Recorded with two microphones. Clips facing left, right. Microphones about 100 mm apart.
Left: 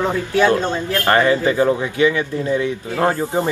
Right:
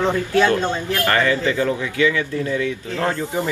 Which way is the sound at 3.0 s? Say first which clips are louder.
Left 5 dB; 40° left (ahead or behind).